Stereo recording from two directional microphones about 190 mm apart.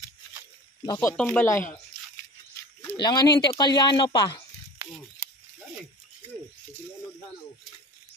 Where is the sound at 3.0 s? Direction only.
20° left (ahead or behind).